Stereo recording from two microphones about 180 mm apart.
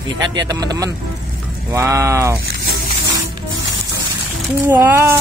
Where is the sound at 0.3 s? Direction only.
20° right (ahead or behind).